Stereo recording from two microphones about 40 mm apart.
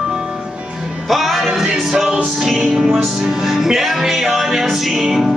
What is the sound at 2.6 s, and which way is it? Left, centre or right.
Music, right.